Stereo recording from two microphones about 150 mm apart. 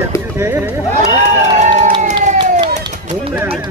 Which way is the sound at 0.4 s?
15° right (ahead or behind).